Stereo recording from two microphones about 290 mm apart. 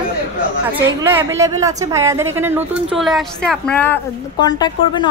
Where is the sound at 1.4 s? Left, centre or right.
Centre.